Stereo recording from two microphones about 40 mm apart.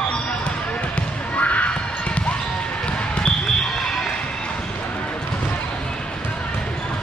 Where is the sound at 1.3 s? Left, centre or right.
Left.